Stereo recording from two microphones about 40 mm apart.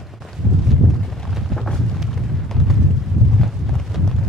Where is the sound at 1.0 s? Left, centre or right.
Centre.